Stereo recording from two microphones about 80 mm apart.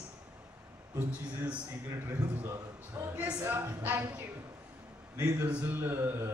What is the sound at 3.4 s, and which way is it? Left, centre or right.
Speech, right.